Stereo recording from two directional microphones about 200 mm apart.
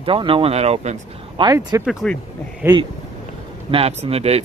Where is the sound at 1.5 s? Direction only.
20° right (ahead or behind).